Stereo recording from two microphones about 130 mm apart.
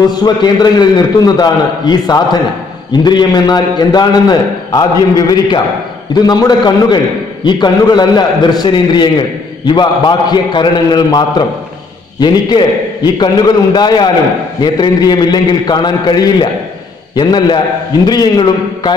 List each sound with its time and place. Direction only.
0.1 s a man's voice: 30° left (ahead or behind)